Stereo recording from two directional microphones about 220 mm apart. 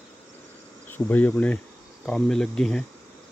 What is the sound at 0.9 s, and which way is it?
Speech, 10° left (ahead or behind).